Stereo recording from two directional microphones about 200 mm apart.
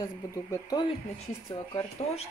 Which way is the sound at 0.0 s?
15° left (ahead or behind).